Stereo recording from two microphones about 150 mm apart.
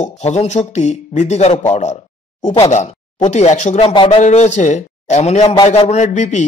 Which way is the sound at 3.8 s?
35° left (ahead or behind).